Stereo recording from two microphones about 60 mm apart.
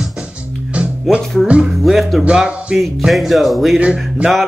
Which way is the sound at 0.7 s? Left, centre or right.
Centre.